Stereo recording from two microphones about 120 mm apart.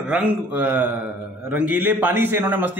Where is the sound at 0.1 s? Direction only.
10° right (ahead or behind).